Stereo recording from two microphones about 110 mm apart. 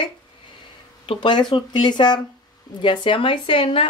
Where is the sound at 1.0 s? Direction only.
50° left (ahead or behind).